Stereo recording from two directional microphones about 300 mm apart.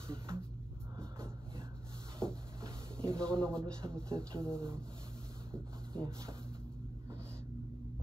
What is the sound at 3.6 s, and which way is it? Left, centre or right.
Speech, centre.